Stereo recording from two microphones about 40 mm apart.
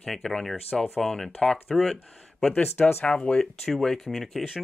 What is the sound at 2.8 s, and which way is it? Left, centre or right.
Speech, left.